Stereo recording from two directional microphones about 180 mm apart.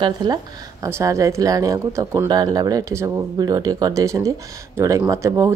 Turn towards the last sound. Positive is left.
turn(degrees=-15)  # may be behind; listen again after turning